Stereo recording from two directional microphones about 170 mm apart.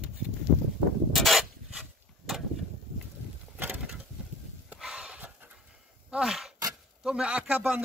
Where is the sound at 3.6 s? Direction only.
5° right (ahead or behind).